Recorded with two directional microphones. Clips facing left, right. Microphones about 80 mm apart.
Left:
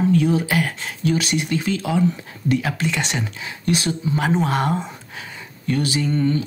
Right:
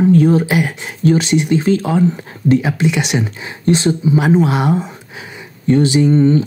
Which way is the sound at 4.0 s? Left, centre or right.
Centre.